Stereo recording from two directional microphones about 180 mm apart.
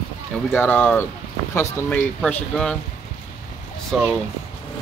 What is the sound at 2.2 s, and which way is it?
Speech, 5° left (ahead or behind).